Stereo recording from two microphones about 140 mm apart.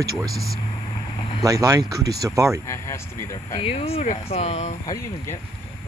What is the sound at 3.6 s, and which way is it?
Speech, 45° left (ahead or behind).